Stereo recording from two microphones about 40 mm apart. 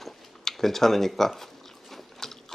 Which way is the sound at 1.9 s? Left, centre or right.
Centre.